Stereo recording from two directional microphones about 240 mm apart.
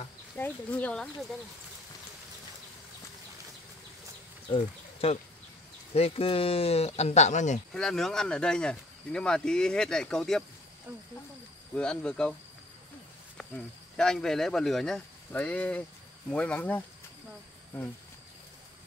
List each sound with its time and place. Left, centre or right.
0.4 s speech: centre
4.5 s speech: left
7.7 s speech: centre
11.7 s speech: centre
13.4 s cricket: centre
13.9 s speech: centre